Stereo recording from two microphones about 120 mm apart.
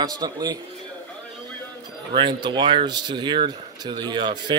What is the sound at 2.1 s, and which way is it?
Speech, 40° right (ahead or behind).